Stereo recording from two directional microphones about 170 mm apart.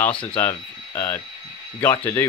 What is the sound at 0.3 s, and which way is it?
Speech, 15° left (ahead or behind).